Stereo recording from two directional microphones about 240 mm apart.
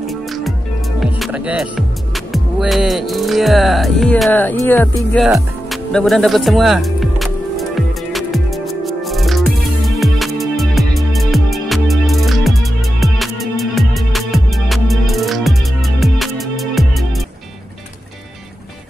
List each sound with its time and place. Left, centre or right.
0.0 s music: centre